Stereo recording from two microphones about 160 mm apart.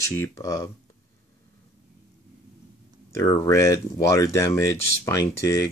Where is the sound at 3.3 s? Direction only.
20° left (ahead or behind).